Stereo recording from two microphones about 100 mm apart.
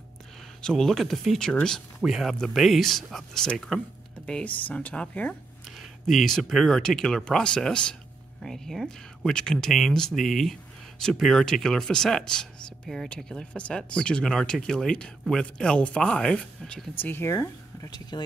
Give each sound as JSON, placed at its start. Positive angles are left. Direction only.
{"t": 0.6, "sound": "speech", "side_deg": 5}
{"t": 4.3, "sound": "speech", "side_deg": 10}
{"t": 5.8, "sound": "speech", "side_deg": 0}
{"t": 16.9, "sound": "speech", "side_deg": 20}
{"t": 17.8, "sound": "speech", "side_deg": 45}